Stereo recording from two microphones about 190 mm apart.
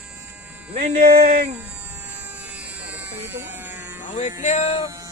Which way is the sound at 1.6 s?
10° right (ahead or behind).